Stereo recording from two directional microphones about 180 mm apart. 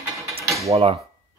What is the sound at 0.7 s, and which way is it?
Speech, 30° right (ahead or behind).